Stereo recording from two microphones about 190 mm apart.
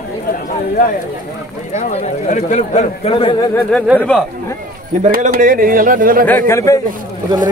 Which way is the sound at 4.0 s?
5° left (ahead or behind).